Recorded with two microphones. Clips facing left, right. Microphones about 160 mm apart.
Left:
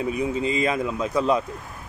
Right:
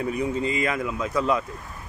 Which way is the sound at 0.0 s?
20° left (ahead or behind).